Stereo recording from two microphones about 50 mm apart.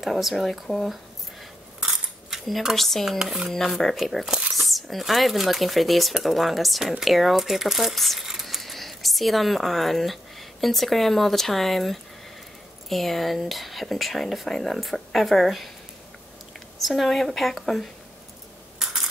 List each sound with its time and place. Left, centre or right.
0.0 s speech: centre
1.8 s coin: centre
2.7 s speech: centre
8.3 s a sound: centre
10.6 s speech: centre
16.8 s speech: centre
18.8 s coin: centre